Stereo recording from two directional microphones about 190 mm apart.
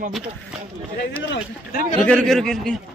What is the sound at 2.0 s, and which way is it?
Speech, 5° left (ahead or behind).